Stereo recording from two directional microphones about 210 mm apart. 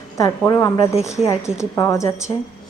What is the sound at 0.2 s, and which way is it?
A woman's voice, 15° left (ahead or behind).